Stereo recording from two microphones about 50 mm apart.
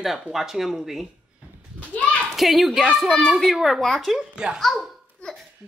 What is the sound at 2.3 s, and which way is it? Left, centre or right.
A child's voice, centre.